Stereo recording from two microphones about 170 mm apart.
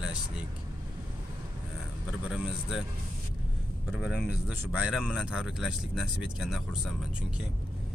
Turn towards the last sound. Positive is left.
turn(degrees=-5)  # may be behind; listen again after turning